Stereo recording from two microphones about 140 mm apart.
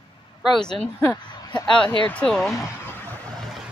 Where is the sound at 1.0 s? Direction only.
20° left (ahead or behind).